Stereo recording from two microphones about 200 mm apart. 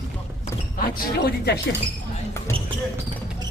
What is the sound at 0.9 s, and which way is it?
Speech, 55° left (ahead or behind).